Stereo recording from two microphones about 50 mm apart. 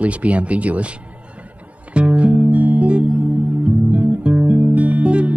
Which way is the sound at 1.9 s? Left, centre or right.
Right.